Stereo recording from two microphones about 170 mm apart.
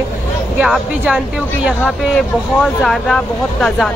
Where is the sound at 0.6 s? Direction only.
5° right (ahead or behind).